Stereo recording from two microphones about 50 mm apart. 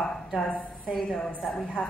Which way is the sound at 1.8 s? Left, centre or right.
Left.